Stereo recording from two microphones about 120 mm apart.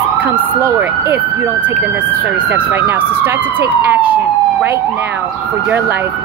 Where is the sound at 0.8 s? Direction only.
15° right (ahead or behind).